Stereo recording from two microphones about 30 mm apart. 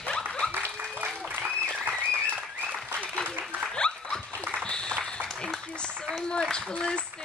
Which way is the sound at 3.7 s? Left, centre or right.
Left.